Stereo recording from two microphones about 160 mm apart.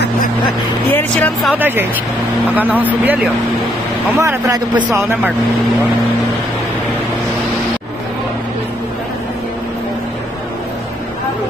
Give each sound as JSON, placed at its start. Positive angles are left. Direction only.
{"t": 1.2, "sound": "speech", "side_deg": 10}
{"t": 2.5, "sound": "speech", "side_deg": -10}
{"t": 4.2, "sound": "speech", "side_deg": -20}